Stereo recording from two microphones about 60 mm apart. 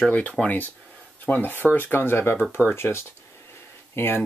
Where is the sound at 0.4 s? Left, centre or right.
Left.